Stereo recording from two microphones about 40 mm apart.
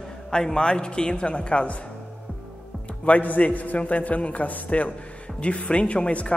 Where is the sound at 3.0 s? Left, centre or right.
Left.